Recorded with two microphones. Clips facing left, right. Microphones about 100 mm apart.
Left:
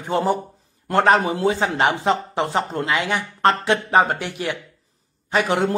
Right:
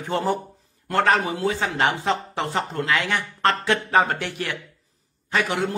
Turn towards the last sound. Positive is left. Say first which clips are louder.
# left 4 dB
turn(degrees=20)  # may be behind; listen again after turning